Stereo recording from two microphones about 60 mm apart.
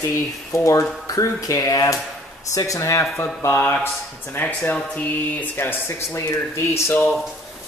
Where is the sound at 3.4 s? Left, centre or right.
Left.